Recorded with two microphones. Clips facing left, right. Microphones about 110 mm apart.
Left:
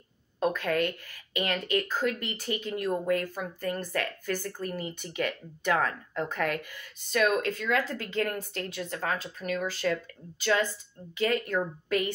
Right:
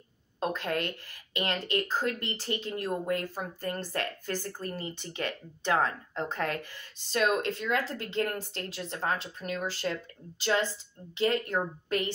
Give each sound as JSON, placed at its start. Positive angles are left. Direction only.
{"t": 0.5, "sound": "speech", "side_deg": -25}